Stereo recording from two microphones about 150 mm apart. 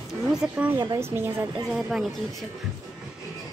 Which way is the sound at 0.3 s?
10° right (ahead or behind).